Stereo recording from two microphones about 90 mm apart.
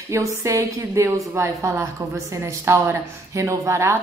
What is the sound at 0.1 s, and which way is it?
A woman's voice, 35° right (ahead or behind).